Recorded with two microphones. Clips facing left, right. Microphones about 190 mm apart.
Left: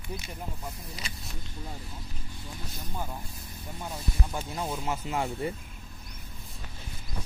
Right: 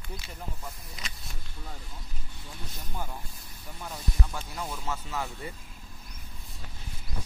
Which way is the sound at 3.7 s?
15° left (ahead or behind).